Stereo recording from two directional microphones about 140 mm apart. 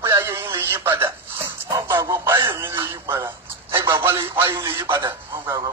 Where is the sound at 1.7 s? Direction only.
25° right (ahead or behind).